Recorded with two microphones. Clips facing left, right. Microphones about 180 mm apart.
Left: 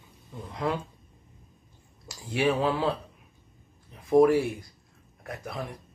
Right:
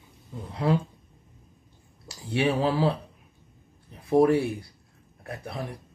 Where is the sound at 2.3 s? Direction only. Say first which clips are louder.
Right 1 dB; 35° right (ahead or behind).